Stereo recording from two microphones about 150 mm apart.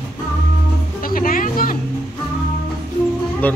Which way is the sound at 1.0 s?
70° left (ahead or behind).